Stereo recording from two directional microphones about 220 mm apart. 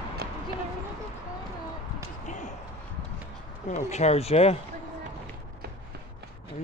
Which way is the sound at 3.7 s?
30° left (ahead or behind).